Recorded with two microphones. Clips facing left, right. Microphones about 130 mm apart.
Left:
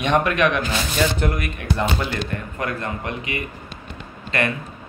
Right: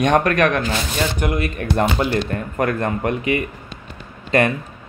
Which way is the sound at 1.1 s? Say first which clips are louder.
Right 2 dB; 15° right (ahead or behind).